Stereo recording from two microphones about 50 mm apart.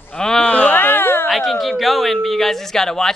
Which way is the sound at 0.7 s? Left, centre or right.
Left.